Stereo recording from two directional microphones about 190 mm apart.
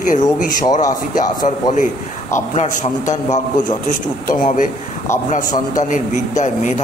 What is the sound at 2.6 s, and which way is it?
A man's voice, 40° left (ahead or behind).